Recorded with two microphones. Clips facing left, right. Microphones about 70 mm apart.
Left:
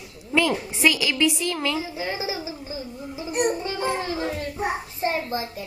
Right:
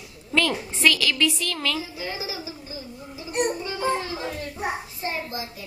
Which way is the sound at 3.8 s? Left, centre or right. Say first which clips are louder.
Right 3 dB; left.